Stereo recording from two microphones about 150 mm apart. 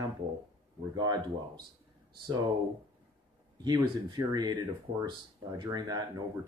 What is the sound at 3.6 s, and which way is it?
Speech, 30° right (ahead or behind).